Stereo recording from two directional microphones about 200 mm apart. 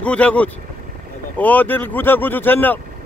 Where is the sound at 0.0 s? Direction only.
5° left (ahead or behind).